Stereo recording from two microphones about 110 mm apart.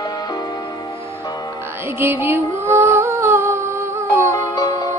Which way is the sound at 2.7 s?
20° right (ahead or behind).